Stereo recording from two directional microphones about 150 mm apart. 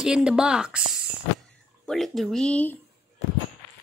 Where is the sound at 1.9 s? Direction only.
5° left (ahead or behind).